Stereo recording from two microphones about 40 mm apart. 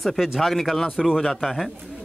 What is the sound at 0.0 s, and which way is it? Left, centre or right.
A woman's voice, centre.